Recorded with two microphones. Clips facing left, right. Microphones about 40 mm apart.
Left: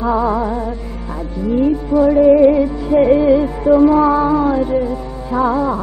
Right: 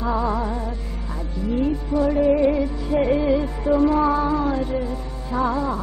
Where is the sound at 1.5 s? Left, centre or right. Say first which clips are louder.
Left 8 dB; centre.